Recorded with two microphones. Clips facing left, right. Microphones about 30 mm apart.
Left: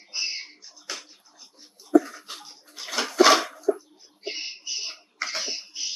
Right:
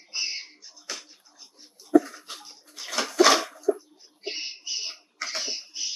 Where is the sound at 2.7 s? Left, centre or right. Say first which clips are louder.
Left 1 dB; centre.